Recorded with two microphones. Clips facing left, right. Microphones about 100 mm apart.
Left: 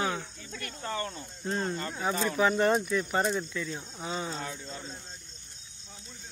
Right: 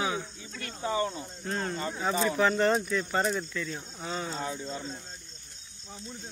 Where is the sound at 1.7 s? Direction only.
10° right (ahead or behind).